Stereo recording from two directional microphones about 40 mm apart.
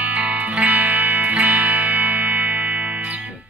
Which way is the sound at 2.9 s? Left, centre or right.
Right.